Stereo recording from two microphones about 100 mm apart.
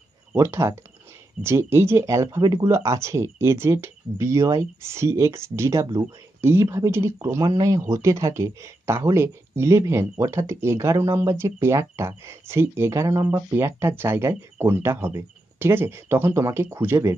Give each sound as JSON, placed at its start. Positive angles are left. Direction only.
{"t": 0.4, "sound": "speech", "side_deg": -30}